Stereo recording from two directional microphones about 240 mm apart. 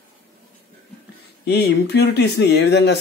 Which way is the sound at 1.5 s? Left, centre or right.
Left.